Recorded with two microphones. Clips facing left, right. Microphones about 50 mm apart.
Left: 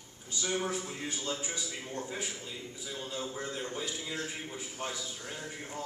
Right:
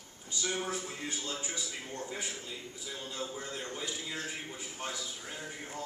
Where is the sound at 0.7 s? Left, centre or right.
Centre.